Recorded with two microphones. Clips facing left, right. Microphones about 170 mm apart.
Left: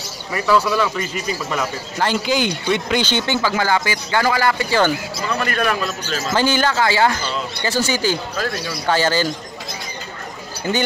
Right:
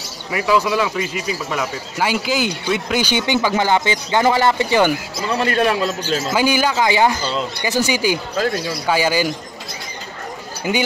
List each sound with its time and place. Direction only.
0.3 s a man's voice: 10° right (ahead or behind); by 6.2 s 30° right (ahead or behind)
6.3 s speech: 10° right (ahead or behind)
10.7 s speech: 15° right (ahead or behind)